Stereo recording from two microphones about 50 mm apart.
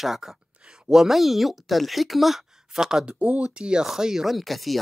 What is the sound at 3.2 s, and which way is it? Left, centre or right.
Speech, right.